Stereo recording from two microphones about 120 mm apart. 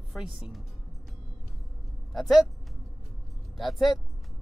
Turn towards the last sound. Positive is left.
turn(degrees=0)  # may be behind; listen again after turning